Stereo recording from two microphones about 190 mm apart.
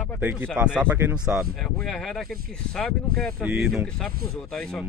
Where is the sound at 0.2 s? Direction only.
10° right (ahead or behind).